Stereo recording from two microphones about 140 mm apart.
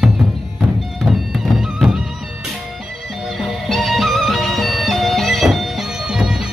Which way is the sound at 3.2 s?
Centre (ahead or behind).